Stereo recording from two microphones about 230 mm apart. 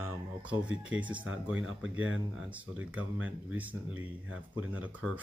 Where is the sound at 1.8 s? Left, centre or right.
Right.